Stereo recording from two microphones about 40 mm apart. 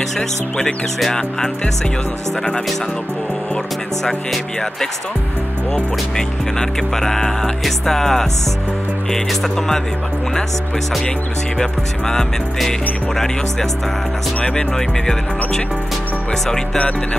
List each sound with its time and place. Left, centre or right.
6.1 s speech: centre
11.5 s speech: centre
14.4 s speech: centre
16.7 s speech: left